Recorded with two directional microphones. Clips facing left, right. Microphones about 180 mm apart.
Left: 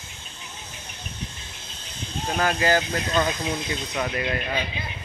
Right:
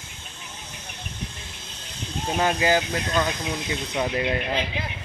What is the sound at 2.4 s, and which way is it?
Speech, 15° right (ahead or behind).